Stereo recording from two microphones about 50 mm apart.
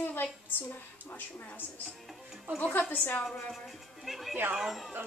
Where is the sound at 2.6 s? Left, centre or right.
Left.